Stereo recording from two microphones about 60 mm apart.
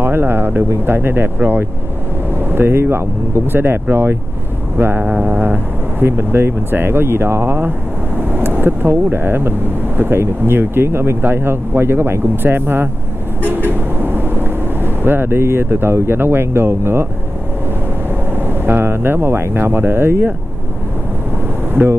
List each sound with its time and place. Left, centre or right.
0.0 s speech: right
8.2 s speech: right
13.5 s vehicle: right
18.5 s speech: right
21.8 s speech: right